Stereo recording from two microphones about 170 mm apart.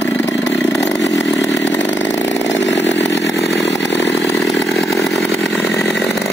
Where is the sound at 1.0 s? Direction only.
90° left.